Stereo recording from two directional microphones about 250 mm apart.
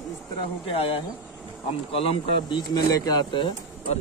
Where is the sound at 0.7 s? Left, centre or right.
Left.